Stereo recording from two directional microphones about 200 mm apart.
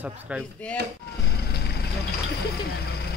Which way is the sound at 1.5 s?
55° left (ahead or behind).